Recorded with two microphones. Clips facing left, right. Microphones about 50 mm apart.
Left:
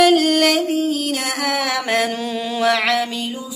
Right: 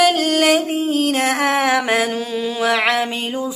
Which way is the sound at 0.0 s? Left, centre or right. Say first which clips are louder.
Left 2 dB; centre.